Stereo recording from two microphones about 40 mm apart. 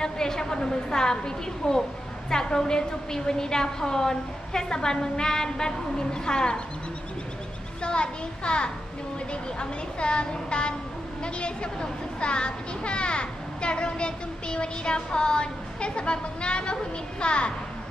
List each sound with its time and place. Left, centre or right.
0.0 s a woman's voice: centre
7.8 s speech: left